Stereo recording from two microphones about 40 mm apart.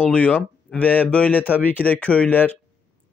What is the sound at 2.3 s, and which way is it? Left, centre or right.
Speech, left.